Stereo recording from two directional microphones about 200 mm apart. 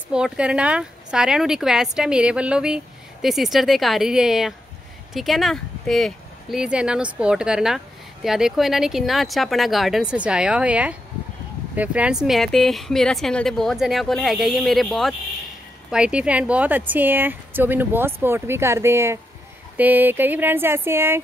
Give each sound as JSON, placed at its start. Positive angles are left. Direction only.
{"t": 0.1, "sound": "speech", "side_deg": -5}